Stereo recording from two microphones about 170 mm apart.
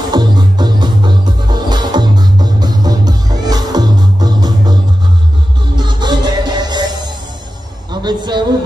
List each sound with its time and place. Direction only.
0.1 s music: 25° right (ahead or behind)
5.8 s music: 25° right (ahead or behind)